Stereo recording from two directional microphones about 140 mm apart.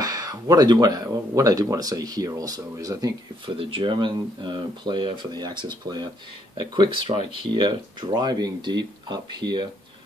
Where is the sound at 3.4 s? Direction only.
40° right (ahead or behind).